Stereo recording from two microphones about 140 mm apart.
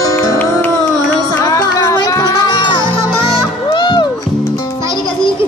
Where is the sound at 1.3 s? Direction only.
25° left (ahead or behind).